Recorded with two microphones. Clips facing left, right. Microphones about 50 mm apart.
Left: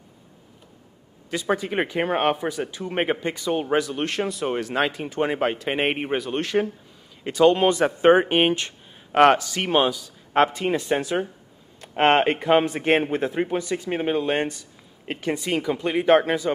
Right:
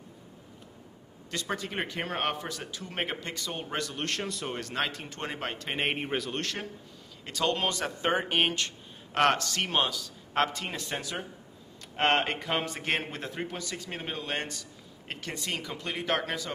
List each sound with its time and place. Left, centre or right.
1.3 s a man's voice: centre